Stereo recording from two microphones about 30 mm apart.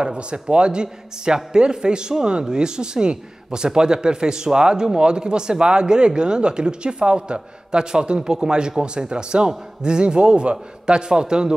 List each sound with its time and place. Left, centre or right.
0.0 s a man's voice: right